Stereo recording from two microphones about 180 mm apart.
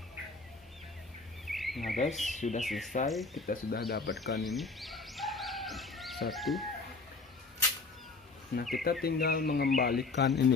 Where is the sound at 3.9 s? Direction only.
70° left (ahead or behind).